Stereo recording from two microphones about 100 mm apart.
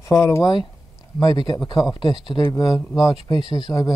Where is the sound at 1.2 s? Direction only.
45° left (ahead or behind).